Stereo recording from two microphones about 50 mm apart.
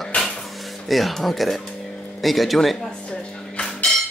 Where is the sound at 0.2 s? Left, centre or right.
Centre.